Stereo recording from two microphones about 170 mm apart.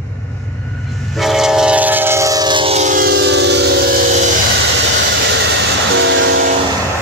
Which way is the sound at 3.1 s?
90° right.